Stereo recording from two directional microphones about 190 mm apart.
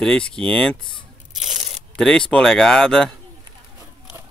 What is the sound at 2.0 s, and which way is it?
Speech, 5° left (ahead or behind).